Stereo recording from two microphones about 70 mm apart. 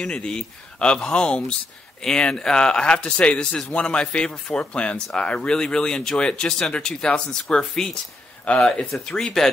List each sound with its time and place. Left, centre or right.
0.0 s speech: centre